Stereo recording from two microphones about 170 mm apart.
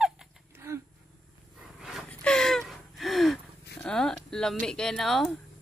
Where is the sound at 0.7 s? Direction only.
15° right (ahead or behind).